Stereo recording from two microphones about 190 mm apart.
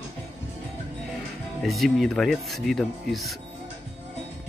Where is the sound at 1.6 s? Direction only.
Centre (ahead or behind).